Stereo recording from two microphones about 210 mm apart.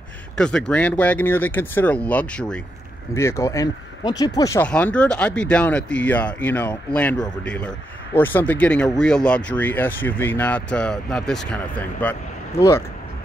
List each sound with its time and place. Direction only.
0.4 s speech: 5° left (ahead or behind)